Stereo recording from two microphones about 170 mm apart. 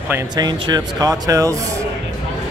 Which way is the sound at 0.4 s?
25° right (ahead or behind).